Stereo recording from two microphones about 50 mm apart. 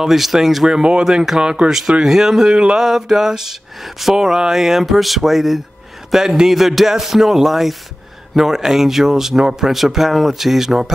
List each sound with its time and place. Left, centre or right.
0.0 s speech: centre
0.7 s speech: centre
2.5 s a sound: centre
2.8 s speech: centre